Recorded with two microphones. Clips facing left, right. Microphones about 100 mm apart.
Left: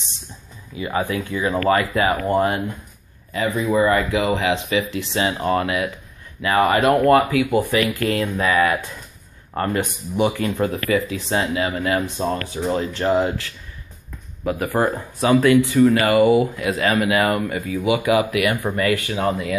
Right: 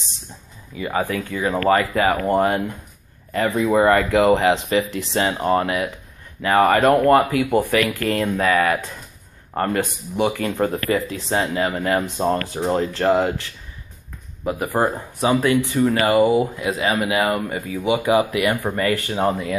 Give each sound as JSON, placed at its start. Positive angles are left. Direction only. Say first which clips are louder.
{"t": 0.7, "sound": "speech", "louder": "even", "side_deg": -45}
{"t": 3.3, "sound": "speech", "louder": "right 2 dB", "side_deg": -65}
{"t": 4.3, "sound": "speech", "louder": "right 4 dB", "side_deg": -45}
{"t": 10.3, "sound": "speech", "louder": "even", "side_deg": -45}
{"t": 14.4, "sound": "speech", "louder": "even", "side_deg": -20}
{"t": 17.4, "sound": "speech", "louder": "left 2 dB", "side_deg": -35}